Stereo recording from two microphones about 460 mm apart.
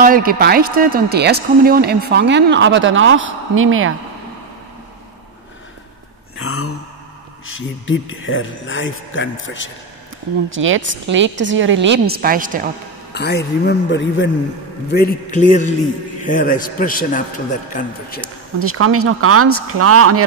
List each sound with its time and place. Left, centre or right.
0.0 s speech: centre
6.3 s a sound: left
7.4 s a man's voice: left
10.5 s speech: right
13.1 s a man's voice: left
18.6 s speech: right